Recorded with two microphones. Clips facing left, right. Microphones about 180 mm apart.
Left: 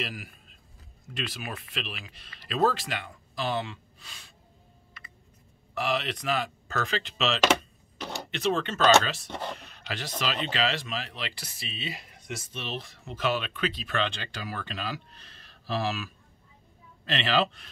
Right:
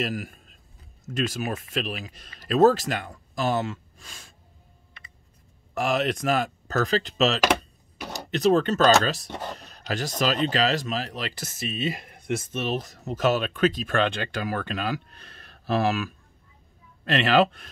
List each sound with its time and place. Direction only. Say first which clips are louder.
0.0 s speech: right 7 dB; 45° right (ahead or behind)
5.8 s speech: right 5 dB; 45° right (ahead or behind)